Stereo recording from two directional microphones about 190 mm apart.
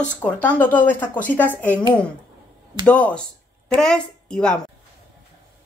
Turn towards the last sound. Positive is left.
turn(degrees=5)  # may be behind; listen again after turning